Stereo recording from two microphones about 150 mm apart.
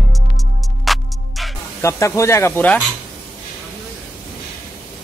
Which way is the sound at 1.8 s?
20° left (ahead or behind).